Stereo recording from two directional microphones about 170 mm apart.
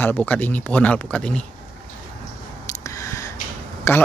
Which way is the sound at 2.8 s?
20° left (ahead or behind).